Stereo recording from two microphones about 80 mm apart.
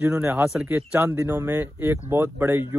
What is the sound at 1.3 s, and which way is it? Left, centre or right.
A man's voice, right.